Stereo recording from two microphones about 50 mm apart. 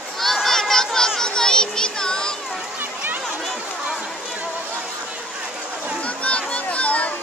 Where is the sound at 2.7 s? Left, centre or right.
Right.